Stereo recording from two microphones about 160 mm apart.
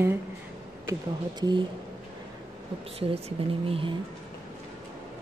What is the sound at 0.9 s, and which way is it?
Speech, 25° right (ahead or behind).